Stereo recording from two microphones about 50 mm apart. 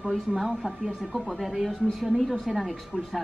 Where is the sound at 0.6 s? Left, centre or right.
Centre.